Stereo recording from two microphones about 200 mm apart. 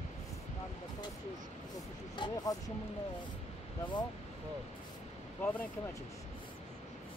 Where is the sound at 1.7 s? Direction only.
20° left (ahead or behind).